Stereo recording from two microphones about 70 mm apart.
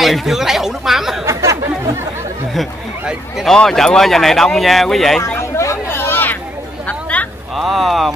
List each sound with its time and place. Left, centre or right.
0.0 s speech: centre
1.2 s chatter: right
3.4 s speech: centre
5.4 s a sound: left
6.9 s a sound: centre
7.5 s speech: centre